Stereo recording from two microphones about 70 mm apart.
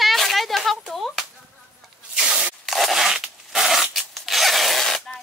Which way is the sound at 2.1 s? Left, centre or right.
Centre.